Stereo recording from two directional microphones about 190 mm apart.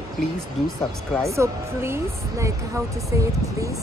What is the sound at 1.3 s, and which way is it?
Speech, 15° right (ahead or behind).